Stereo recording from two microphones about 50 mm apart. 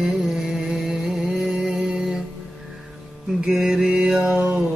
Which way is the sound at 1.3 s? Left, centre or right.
Right.